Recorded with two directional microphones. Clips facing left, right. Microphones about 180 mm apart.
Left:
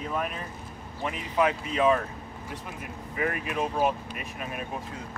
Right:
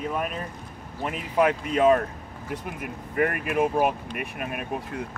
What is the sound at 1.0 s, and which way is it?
Speech, 50° right (ahead or behind).